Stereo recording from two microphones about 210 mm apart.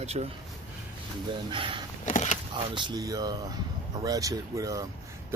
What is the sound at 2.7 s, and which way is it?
Speech, 20° right (ahead or behind).